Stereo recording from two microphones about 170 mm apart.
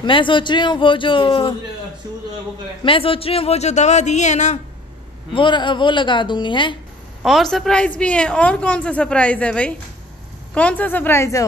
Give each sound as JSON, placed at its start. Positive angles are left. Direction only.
{"t": 0.0, "sound": "a woman's voice", "side_deg": 30}
{"t": 2.8, "sound": "speech", "side_deg": 30}
{"t": 5.3, "sound": "a woman's voice", "side_deg": 30}
{"t": 7.2, "sound": "a woman's voice", "side_deg": 0}